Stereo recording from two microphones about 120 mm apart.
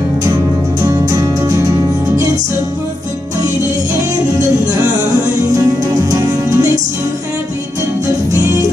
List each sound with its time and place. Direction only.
0.8 s music: 30° right (ahead or behind)
5.5 s music: 30° right (ahead or behind)